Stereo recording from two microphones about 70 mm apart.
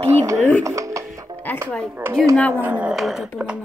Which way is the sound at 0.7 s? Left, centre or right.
Right.